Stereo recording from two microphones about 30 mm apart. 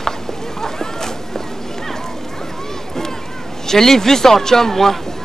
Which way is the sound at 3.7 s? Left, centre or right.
Centre.